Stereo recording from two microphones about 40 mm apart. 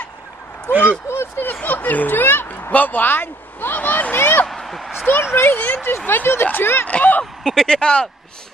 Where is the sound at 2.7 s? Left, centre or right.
Left.